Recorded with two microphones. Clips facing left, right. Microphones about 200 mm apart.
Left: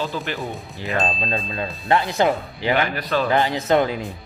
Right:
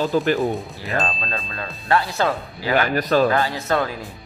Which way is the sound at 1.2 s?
20° left (ahead or behind).